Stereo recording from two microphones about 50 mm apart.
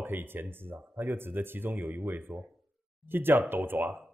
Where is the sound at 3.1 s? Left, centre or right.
Right.